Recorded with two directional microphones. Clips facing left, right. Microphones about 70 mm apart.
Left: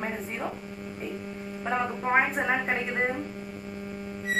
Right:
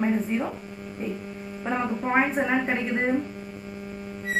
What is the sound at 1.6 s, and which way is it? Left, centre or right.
A woman's voice, centre.